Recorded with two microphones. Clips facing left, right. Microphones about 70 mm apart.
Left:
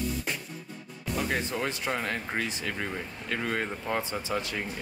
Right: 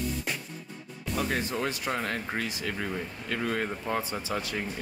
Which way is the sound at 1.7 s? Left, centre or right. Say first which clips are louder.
Even; left.